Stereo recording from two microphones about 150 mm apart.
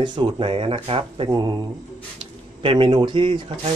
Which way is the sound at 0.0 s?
30° right (ahead or behind).